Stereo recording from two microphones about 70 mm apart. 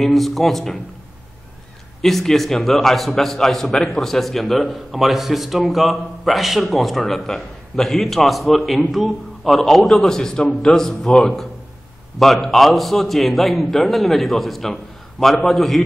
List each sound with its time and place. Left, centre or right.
0.0 s a man's voice: centre
2.0 s a man's voice: centre